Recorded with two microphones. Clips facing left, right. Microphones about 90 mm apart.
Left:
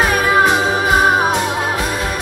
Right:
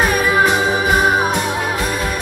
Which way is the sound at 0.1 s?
40° left (ahead or behind).